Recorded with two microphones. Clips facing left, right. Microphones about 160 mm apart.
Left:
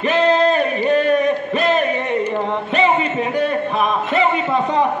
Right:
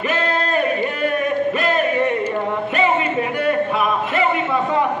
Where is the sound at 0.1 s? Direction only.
20° left (ahead or behind).